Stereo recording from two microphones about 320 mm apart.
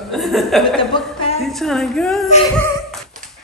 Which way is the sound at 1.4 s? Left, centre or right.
Centre.